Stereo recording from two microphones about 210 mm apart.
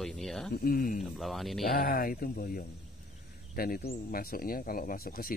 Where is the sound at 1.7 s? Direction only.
40° left (ahead or behind).